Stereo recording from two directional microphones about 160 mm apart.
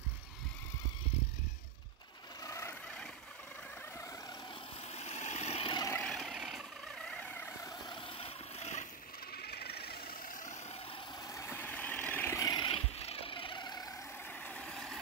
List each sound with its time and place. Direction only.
2.4 s vehicle: 20° left (ahead or behind)
4.9 s vehicle: 45° left (ahead or behind)
5.8 s vehicle: 15° left (ahead or behind)
6.0 s vehicle: centre (ahead or behind)
7.7 s vehicle: 30° left (ahead or behind)
9.4 s engine: 80° left
11.2 s vehicle: 15° left (ahead or behind)
12.4 s vehicle: 30° left (ahead or behind)
14.4 s vehicle: 5° left (ahead or behind)